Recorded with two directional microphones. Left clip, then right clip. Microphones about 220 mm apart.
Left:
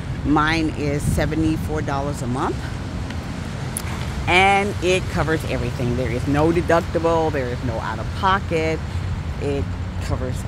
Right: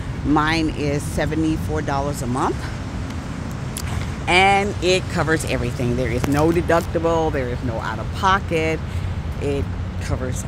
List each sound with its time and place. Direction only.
0.3 s speech: centre (ahead or behind)
4.3 s speech: centre (ahead or behind)